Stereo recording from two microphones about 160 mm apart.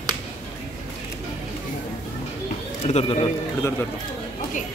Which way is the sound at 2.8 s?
45° left (ahead or behind).